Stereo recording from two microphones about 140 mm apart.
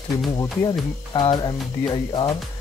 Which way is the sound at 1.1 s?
30° left (ahead or behind).